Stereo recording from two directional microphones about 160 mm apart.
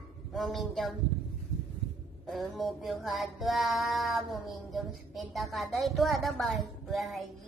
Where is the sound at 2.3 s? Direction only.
Centre (ahead or behind).